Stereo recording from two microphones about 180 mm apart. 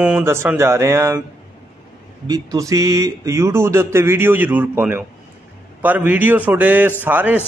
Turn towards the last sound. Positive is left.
turn(degrees=-10)  # may be behind; listen again after turning